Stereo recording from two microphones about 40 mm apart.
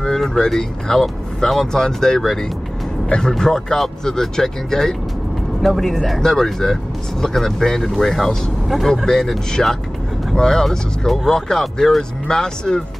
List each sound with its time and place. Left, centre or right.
0.1 s speech: centre
5.6 s speech: centre
6.1 s speech: centre
9.0 s speech: centre
12.3 s speech: centre